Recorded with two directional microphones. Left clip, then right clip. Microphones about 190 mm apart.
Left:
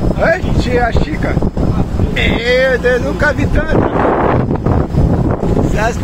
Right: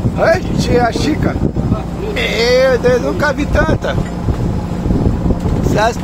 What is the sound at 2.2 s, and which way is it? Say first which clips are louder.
Speech: right 1 dB; 15° right (ahead or behind).